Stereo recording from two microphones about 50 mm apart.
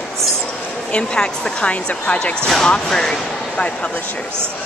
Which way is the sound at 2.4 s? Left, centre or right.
Centre.